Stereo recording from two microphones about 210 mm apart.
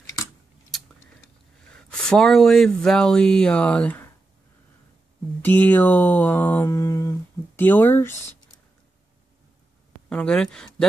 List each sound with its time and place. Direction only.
0.0 s a sound: 15° left (ahead or behind)
1.8 s speech: 5° left (ahead or behind)
5.4 s mantra: 10° left (ahead or behind)
10.0 s speech: 5° left (ahead or behind)